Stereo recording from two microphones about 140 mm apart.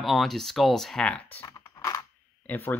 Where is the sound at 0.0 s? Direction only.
Centre (ahead or behind).